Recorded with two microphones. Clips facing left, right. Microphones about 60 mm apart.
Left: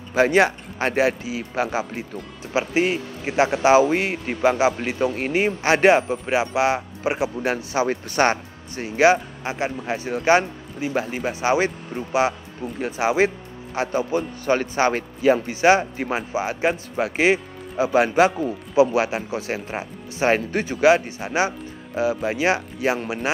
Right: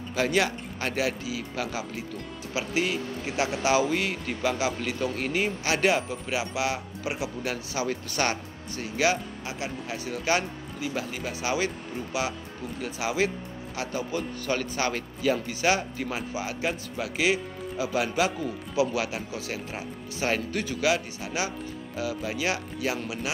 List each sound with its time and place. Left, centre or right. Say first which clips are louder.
0.1 s speech: left 8 dB; left